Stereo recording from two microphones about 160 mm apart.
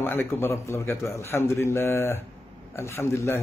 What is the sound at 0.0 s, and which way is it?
A man's voice, 15° left (ahead or behind).